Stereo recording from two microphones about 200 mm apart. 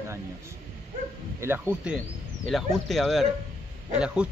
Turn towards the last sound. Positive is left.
turn(degrees=-5)  # may be behind; listen again after turning